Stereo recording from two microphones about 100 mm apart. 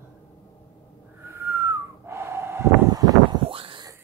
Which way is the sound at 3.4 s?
65° right (ahead or behind).